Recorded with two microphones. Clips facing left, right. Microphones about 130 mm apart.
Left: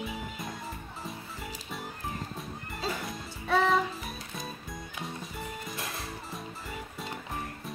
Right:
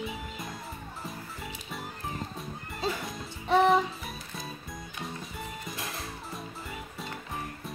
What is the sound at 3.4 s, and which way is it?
Music, 20° right (ahead or behind).